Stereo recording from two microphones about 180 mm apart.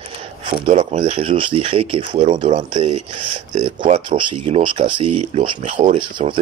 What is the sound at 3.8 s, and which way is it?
Speech, 30° right (ahead or behind).